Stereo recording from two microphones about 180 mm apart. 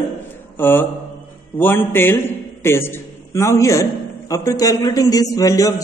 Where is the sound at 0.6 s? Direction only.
10° left (ahead or behind).